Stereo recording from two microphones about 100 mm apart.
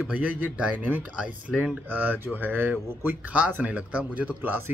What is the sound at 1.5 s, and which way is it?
Speech, 5° right (ahead or behind).